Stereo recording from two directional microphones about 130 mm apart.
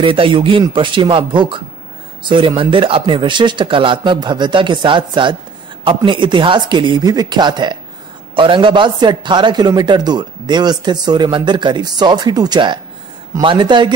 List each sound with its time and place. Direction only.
0.0 s a man's voice: 40° right (ahead or behind)